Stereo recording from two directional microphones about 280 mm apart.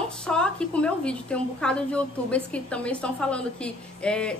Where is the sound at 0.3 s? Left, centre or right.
Centre.